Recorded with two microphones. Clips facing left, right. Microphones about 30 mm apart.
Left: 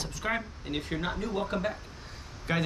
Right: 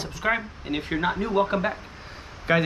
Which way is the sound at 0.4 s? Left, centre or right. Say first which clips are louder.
Right 5 dB; right.